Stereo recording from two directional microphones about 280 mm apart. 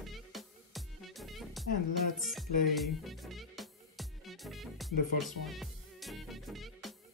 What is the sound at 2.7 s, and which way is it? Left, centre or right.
Music, centre.